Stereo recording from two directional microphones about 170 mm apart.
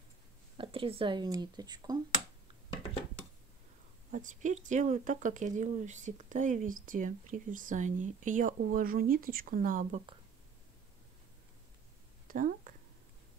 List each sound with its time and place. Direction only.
0.6 s speech: 30° right (ahead or behind)
4.1 s speech: 45° right (ahead or behind)
12.3 s a sound: 50° right (ahead or behind)